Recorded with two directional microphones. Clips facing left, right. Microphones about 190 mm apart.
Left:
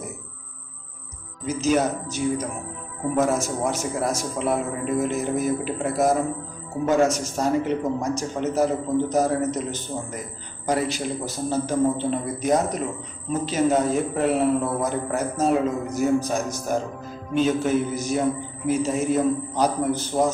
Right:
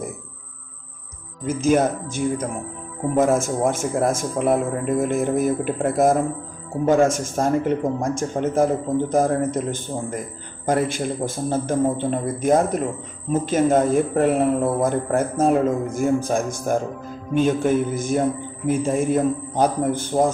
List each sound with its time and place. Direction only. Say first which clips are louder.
1.4 s a man's voice: right 3 dB; 50° right (ahead or behind)